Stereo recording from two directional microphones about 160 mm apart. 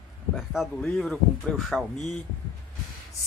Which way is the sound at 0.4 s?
Centre (ahead or behind).